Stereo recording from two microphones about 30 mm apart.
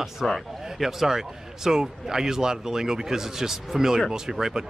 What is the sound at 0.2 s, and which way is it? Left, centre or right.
Speech, centre.